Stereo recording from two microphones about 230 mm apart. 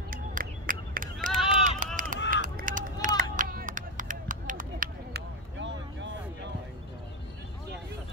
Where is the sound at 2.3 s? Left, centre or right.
Right.